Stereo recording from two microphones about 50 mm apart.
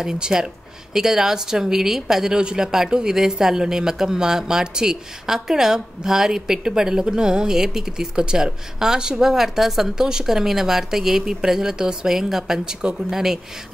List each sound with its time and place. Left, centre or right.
0.0 s speech: centre